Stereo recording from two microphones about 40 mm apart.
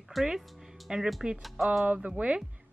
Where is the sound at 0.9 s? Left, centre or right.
Centre.